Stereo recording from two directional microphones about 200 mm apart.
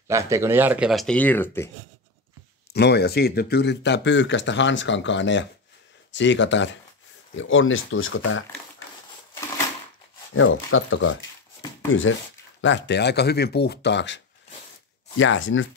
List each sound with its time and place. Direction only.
0.1 s speech: 15° right (ahead or behind); by 1.7 s 10° left (ahead or behind)
2.7 s speech: 55° left (ahead or behind); by 8.5 s 85° left
10.3 s speech: 75° left (ahead or behind)
12.6 s speech: 65° left (ahead or behind)